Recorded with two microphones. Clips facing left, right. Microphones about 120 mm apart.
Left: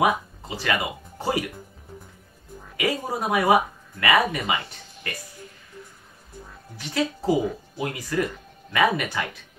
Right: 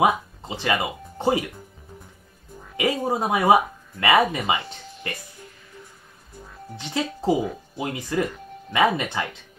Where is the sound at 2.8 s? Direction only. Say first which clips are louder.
Right 3 dB; 25° right (ahead or behind).